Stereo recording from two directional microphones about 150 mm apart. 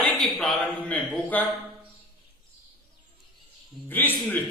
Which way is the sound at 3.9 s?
10° left (ahead or behind).